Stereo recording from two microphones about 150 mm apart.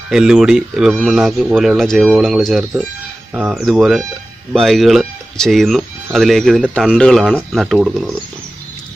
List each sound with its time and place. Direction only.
0.1 s speech: 5° right (ahead or behind)